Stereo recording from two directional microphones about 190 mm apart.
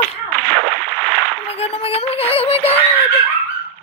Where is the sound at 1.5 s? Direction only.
30° left (ahead or behind).